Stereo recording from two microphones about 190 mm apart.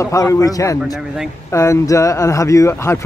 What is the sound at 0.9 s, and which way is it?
Speech, centre (ahead or behind).